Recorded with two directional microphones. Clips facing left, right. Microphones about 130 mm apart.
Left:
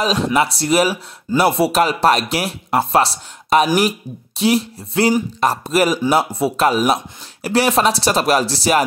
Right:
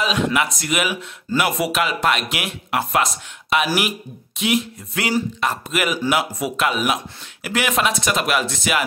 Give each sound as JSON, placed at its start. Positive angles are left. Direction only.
{"t": 0.0, "sound": "speech", "side_deg": 35}